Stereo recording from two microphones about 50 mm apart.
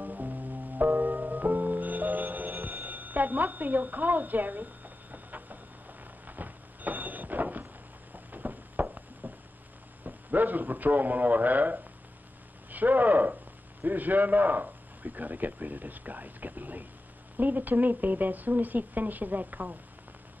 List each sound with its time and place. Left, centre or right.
0.0 s music: right
6.2 s vehicle: right
8.3 s a sound: right
10.0 s a man's voice: right